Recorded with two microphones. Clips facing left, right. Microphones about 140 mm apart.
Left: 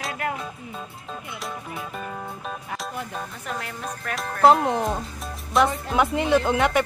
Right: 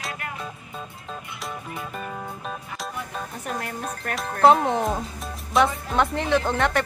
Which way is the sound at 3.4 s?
45° right (ahead or behind).